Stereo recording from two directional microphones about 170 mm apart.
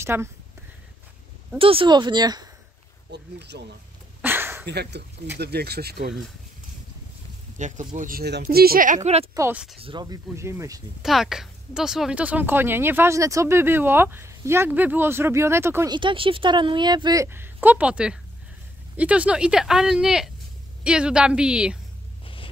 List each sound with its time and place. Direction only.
0.0 s speech: 15° right (ahead or behind)
1.6 s a woman's voice: 30° right (ahead or behind)
3.1 s speech: 85° right
4.2 s a sound: 10° right (ahead or behind)
4.6 s speech: 85° right; by 6.1 s 70° right (ahead or behind)
7.5 s speech: 45° right (ahead or behind)
9.3 s speech: 15° right (ahead or behind)
9.8 s a woman's voice: 30° right (ahead or behind)
11.0 s speech: centre (ahead or behind)
15.9 s a woman's voice: 30° right (ahead or behind); by 21.7 s 5° right (ahead or behind)
22.2 s vehicle: 30° left (ahead or behind)